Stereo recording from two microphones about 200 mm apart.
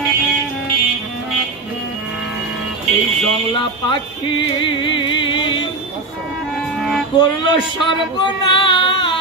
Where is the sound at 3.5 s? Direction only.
25° left (ahead or behind).